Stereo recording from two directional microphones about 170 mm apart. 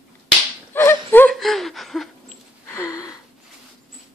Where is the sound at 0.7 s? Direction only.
15° left (ahead or behind).